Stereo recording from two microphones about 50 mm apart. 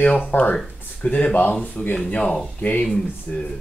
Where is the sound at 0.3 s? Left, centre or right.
Left.